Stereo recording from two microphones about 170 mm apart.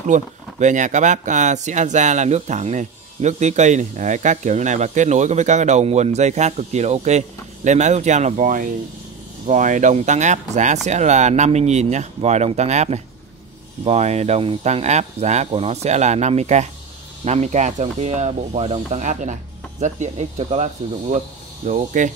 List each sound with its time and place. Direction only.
0.1 s speech: 45° right (ahead or behind)